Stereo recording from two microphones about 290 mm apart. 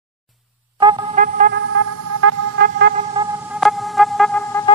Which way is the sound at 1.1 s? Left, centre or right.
Right.